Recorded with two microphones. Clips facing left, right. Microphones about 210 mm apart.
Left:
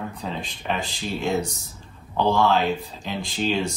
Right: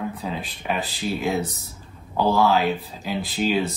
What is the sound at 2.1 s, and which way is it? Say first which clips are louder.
Speech: right 1 dB; 5° right (ahead or behind).